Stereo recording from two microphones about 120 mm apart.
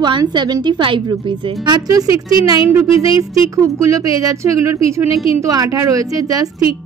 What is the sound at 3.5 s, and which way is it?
A woman's voice, 25° right (ahead or behind).